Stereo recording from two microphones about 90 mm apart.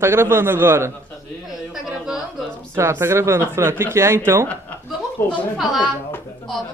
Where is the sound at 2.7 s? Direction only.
30° right (ahead or behind).